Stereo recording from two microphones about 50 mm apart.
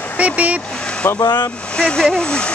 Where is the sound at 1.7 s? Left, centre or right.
Centre.